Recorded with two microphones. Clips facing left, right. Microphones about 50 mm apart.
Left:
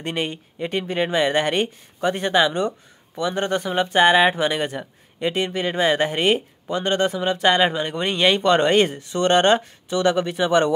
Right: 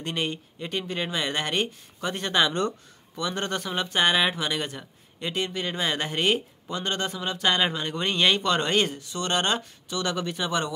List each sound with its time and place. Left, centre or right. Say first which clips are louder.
0.0 s speech: left 3 dB; left